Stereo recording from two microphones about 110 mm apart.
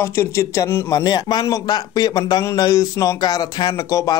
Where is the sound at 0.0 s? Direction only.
25° left (ahead or behind).